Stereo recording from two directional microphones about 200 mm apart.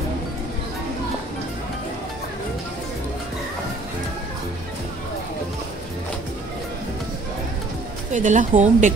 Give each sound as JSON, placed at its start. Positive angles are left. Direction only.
{"t": 8.1, "sound": "a woman's voice", "side_deg": -40}